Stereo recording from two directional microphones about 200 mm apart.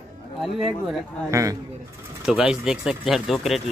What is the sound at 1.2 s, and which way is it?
Speech, 15° right (ahead or behind).